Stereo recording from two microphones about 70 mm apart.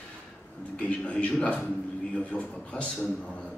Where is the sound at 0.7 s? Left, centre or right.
Centre.